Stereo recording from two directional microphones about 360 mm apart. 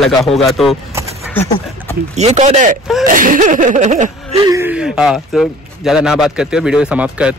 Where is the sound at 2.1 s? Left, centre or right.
Centre.